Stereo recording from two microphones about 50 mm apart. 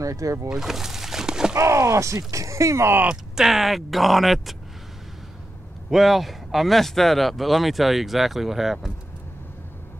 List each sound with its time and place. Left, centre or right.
0.0 s speech: right
0.5 s speech: centre
1.6 s speech: right
3.1 s speech: centre
5.9 s speech: centre